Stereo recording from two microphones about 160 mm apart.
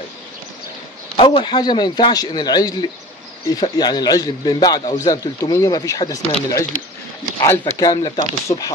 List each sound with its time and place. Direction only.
1.1 s a man's voice: 30° left (ahead or behind)